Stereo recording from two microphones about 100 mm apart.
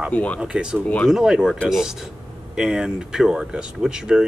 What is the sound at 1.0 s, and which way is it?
Speech, 5° right (ahead or behind).